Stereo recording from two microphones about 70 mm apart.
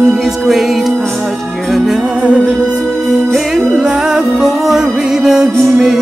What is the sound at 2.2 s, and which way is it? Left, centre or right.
Music, centre.